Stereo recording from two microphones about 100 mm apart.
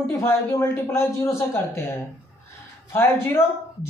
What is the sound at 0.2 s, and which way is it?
A man's voice, 25° left (ahead or behind).